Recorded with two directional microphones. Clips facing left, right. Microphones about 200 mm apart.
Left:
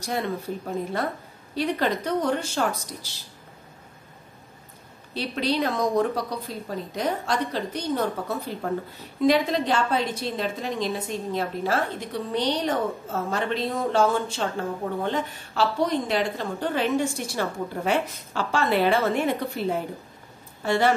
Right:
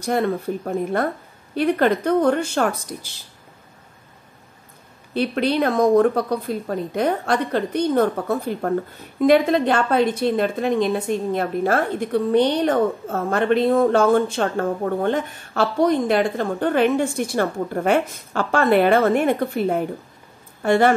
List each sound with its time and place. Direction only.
0.0 s a woman's voice: 55° right (ahead or behind)
5.1 s a woman's voice: 55° right (ahead or behind)